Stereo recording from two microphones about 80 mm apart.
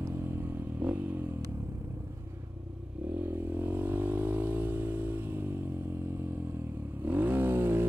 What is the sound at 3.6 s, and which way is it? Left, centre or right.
Vehicle, right.